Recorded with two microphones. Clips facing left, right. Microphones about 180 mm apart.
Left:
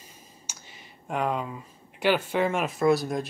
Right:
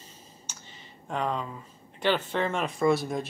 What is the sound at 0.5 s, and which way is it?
Speech, 10° left (ahead or behind).